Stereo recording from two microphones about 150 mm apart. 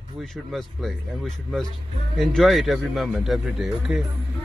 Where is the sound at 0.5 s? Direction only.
Centre (ahead or behind).